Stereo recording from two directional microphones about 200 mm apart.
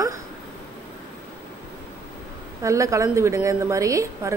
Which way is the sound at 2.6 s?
15° right (ahead or behind).